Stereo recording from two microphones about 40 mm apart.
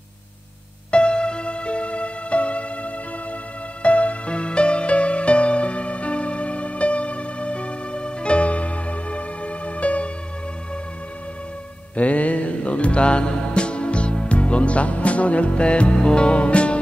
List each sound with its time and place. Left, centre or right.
0.9 s music: left
11.9 s music: left